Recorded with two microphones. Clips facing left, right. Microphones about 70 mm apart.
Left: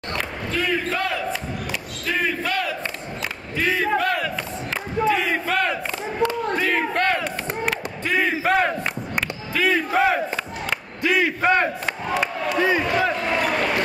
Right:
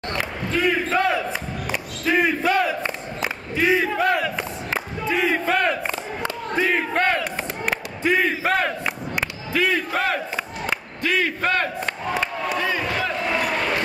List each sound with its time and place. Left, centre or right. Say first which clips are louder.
0.5 s basketball bounce: right 3 dB; centre
1.7 s battle cry: right 6 dB; centre
6.2 s battle cry: left 2 dB; centre
9.5 s speech: left 1 dB; centre; by 13.1 s left